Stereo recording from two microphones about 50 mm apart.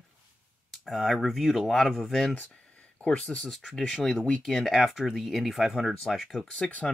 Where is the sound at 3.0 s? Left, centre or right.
Left.